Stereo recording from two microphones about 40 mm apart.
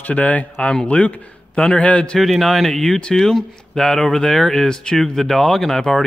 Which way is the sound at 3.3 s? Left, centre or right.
Centre.